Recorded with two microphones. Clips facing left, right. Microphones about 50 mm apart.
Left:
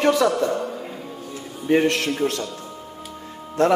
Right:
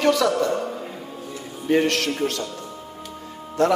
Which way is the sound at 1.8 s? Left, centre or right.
Left.